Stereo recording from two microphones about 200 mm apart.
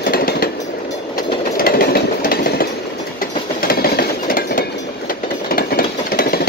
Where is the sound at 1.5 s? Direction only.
45° left (ahead or behind).